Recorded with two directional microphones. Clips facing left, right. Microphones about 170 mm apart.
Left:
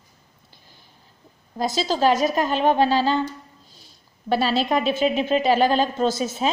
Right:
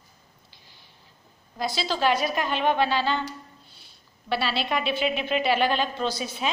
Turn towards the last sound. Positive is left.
turn(degrees=45)  # may be behind; listen again after turning